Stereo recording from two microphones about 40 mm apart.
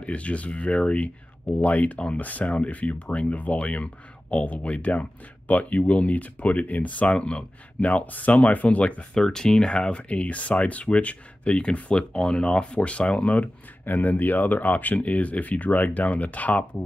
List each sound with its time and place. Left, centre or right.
0.0 s speech: left
7.2 s speech: left
7.8 s speech: left
9.1 s speech: centre; by 13.5 s left
13.8 s speech: left